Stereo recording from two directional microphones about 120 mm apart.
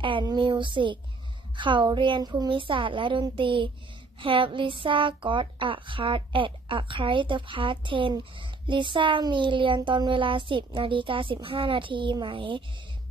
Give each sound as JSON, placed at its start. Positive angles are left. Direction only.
{"t": 0.0, "sound": "speech", "side_deg": -40}